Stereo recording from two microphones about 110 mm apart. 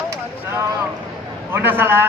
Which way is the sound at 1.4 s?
20° right (ahead or behind).